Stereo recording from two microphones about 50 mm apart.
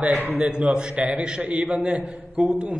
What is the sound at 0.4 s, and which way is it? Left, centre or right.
A man's voice, right.